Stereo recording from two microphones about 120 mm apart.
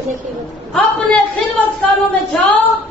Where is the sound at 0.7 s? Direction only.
10° left (ahead or behind).